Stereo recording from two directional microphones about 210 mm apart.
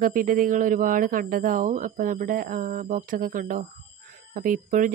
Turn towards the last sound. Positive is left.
turn(degrees=-40)  # may be behind; listen again after turning